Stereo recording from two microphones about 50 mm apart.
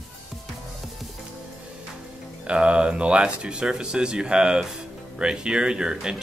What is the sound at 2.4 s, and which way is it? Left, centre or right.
Speech, right.